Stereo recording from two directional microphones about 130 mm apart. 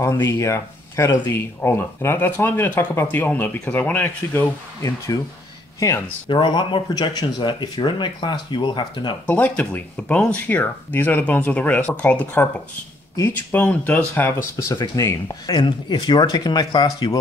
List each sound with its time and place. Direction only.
0.0 s speech: 20° left (ahead or behind)
6.2 s speech: 40° left (ahead or behind)
9.2 s speech: 10° left (ahead or behind)
14.8 s speech: 25° left (ahead or behind)